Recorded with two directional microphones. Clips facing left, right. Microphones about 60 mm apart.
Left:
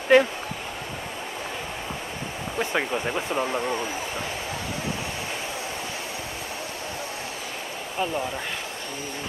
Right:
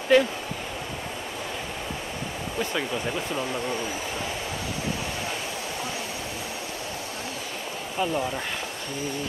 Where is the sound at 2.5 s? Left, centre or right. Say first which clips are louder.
Left 3 dB; left.